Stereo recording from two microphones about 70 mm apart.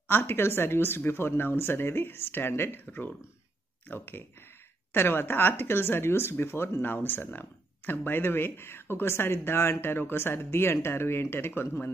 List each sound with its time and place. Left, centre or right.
0.1 s speech: left